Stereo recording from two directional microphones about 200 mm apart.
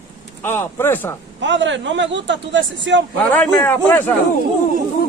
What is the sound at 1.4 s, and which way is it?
A man's voice, 65° right (ahead or behind).